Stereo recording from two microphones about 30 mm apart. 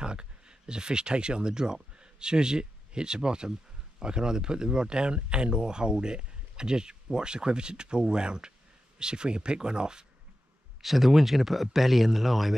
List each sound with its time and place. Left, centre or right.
0.0 s speech: right
10.8 s speech: centre